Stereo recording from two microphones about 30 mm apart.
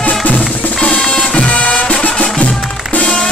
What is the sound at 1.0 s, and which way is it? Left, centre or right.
Music, centre.